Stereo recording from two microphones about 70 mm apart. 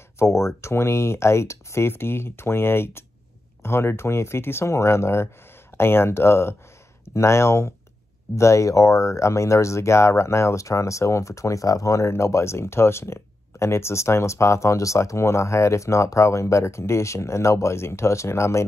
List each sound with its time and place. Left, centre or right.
0.2 s speech: left